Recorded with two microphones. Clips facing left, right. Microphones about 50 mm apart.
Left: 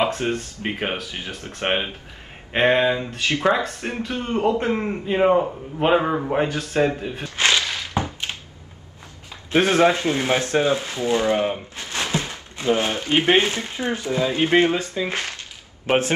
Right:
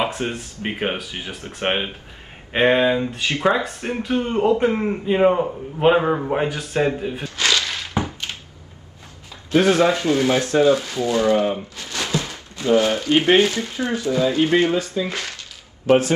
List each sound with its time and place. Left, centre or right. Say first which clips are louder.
0.2 s a man's voice: left 1 dB; centre
1.1 s speech: right 1 dB; right
2.5 s a man's voice: right 1 dB; centre
3.1 s speech: right 1 dB; centre
4.6 s a man's voice: right 3 dB; centre
7.2 s a sound: left 2 dB; left
9.5 s speech: right 1 dB; left